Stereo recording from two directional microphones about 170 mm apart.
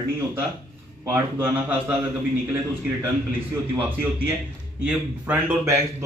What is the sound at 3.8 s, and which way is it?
Speech, 10° right (ahead or behind).